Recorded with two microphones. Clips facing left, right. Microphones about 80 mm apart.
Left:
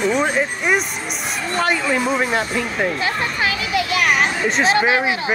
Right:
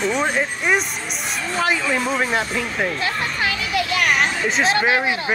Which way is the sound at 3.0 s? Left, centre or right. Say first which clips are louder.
Left 2 dB; centre.